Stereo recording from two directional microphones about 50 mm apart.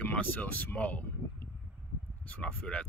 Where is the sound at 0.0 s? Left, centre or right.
Left.